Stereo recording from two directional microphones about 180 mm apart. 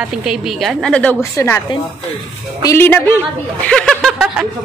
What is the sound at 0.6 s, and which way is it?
A woman's voice, 5° left (ahead or behind).